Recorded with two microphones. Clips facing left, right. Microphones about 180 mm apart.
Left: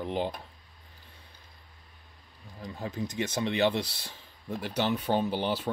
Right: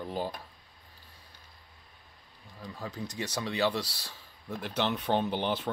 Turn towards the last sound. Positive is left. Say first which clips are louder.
# left 1 dB
turn(degrees=5)  # may be behind; listen again after turning